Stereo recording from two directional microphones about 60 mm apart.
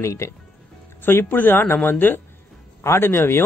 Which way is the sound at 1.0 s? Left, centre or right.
Left.